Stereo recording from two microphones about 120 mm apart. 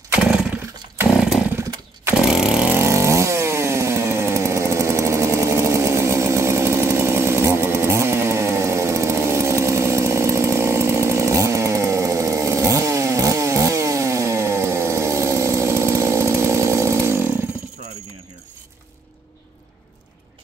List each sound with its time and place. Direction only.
0.1 s chainsaw: 5° right (ahead or behind)
2.8 s chainsaw: 25° right (ahead or behind)